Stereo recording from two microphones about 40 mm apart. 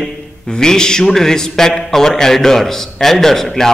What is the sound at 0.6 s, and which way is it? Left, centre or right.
A man's voice, centre.